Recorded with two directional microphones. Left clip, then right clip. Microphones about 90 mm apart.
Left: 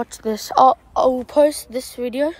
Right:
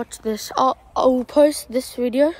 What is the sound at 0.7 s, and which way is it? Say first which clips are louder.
A woman's voice: left 1 dB; 10° right (ahead or behind).